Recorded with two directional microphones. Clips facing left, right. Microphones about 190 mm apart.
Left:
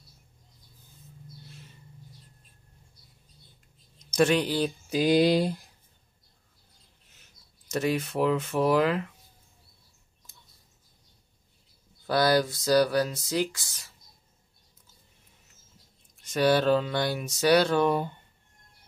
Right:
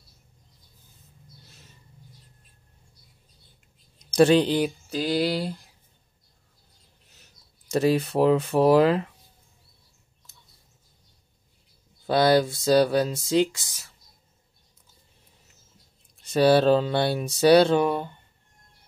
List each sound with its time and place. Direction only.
4.1 s speech: 30° right (ahead or behind)
4.8 s a sound: 15° left (ahead or behind)
7.7 s speech: 35° right (ahead or behind)
12.1 s speech: 25° right (ahead or behind)
16.2 s speech: 30° right (ahead or behind)
17.8 s speech: centre (ahead or behind)